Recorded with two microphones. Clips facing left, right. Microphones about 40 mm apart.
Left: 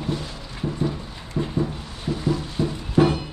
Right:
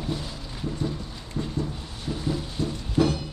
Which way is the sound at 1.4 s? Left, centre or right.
Left.